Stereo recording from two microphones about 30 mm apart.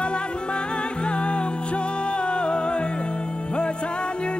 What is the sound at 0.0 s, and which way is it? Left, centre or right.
Music, left.